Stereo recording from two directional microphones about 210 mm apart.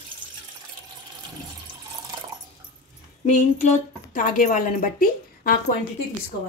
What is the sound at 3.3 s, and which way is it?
Speech, 35° left (ahead or behind).